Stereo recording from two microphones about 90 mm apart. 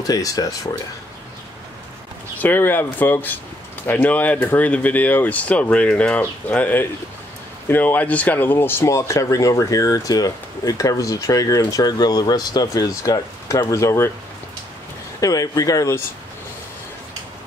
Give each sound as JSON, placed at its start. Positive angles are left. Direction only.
{"t": 0.0, "sound": "speech", "side_deg": 45}
{"t": 2.4, "sound": "speech", "side_deg": 20}
{"t": 15.1, "sound": "speech", "side_deg": 40}